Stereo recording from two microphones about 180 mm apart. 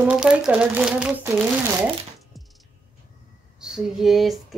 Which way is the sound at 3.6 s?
5° right (ahead or behind).